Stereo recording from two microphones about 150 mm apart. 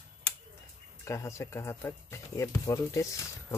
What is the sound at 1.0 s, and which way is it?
Speech, 20° left (ahead or behind).